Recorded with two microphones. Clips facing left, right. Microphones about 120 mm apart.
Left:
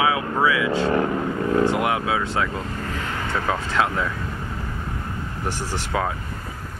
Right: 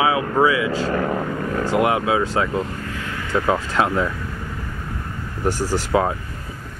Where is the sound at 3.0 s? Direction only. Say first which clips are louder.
Left 1 dB; 30° left (ahead or behind).